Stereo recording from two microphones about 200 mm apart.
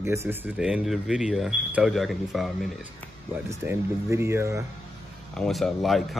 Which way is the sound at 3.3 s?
10° right (ahead or behind).